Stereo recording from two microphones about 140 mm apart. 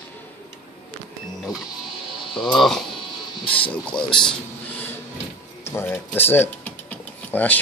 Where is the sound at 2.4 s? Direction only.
Centre (ahead or behind).